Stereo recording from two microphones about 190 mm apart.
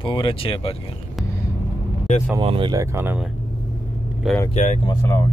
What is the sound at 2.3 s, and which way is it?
Speech, 25° right (ahead or behind).